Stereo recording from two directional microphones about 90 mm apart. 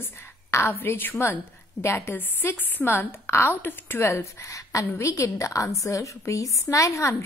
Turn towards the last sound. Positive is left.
turn(degrees=35)  # may be behind; listen again after turning